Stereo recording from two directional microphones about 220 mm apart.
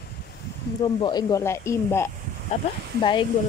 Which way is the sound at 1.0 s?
20° left (ahead or behind).